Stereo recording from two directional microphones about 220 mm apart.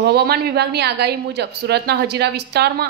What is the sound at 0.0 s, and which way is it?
Speech, 45° right (ahead or behind).